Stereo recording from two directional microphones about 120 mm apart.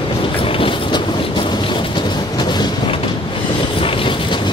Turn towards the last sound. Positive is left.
turn(degrees=45)  # may be behind; listen again after turning